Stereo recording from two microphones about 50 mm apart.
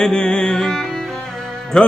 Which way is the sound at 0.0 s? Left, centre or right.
Centre.